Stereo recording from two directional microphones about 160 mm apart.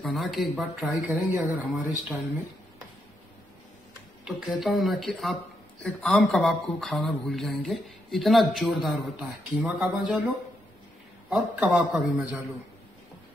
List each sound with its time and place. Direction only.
0.0 s speech: centre (ahead or behind)
4.2 s speech: centre (ahead or behind)